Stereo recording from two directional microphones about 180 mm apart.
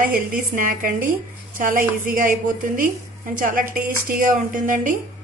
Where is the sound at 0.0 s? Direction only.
50° right (ahead or behind).